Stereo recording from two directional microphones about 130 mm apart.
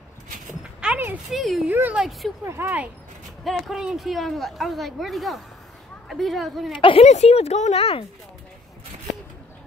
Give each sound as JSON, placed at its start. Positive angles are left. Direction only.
{"t": 0.7, "sound": "a sound", "side_deg": -10}
{"t": 1.3, "sound": "speech", "side_deg": 0}
{"t": 1.7, "sound": "speech", "side_deg": -15}
{"t": 2.4, "sound": "speech", "side_deg": -20}
{"t": 3.4, "sound": "speech", "side_deg": 0}
{"t": 6.7, "sound": "a woman's voice", "side_deg": 40}
{"t": 7.1, "sound": "speech", "side_deg": 55}